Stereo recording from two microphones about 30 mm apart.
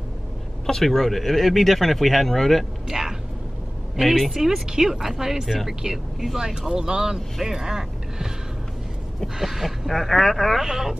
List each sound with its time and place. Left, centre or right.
0.8 s speech: centre
2.9 s a sound: centre
4.0 s speech: centre
9.4 s speech: centre
9.8 s speech: centre
10.6 s speech: centre